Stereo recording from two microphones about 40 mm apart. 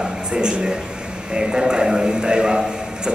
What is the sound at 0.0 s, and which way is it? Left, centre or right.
A woman's voice, right.